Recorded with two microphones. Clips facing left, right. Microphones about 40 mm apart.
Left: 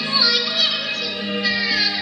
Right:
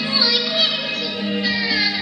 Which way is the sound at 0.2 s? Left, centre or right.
Centre.